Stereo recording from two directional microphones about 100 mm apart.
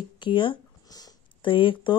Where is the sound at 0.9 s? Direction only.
40° left (ahead or behind).